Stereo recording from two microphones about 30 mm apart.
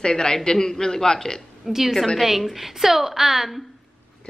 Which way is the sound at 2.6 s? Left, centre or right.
Centre.